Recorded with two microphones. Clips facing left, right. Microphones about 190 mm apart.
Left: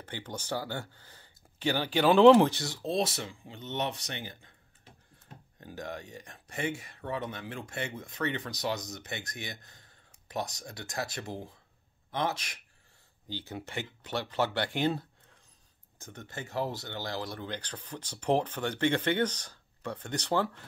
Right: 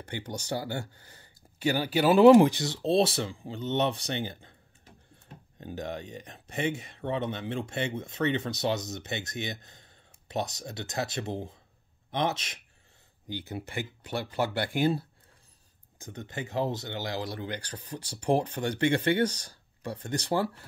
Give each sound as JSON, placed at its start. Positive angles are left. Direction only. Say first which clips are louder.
{"t": 0.0, "sound": "speech", "louder": "right 3 dB", "side_deg": -15}
{"t": 5.6, "sound": "speech", "louder": "right 4 dB", "side_deg": -20}